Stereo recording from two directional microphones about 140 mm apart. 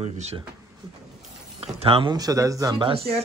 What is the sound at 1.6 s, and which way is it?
A man's voice, 40° right (ahead or behind).